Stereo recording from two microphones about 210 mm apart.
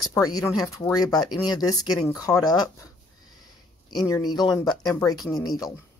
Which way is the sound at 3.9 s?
20° left (ahead or behind).